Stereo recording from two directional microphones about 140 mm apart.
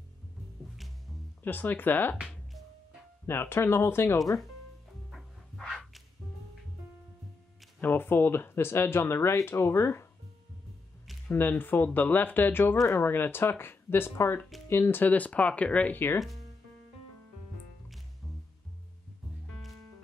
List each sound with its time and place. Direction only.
1.4 s speech: 15° left (ahead or behind)
3.3 s speech: 15° left (ahead or behind)
5.1 s music: centre (ahead or behind)
7.8 s speech: 15° left (ahead or behind)
11.2 s speech: 15° left (ahead or behind)
17.8 s music: centre (ahead or behind)